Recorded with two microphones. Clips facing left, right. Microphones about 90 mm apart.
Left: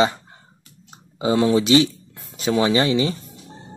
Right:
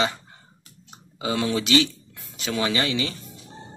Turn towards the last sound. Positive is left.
turn(degrees=30)  # may be behind; listen again after turning